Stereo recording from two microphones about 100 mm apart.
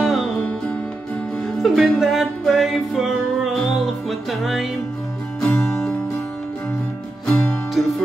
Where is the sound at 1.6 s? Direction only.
Centre (ahead or behind).